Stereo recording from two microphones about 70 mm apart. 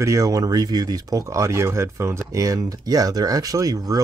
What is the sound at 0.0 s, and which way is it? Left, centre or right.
Speech, right.